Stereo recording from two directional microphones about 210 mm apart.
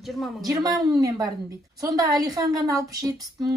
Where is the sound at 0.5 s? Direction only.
15° right (ahead or behind).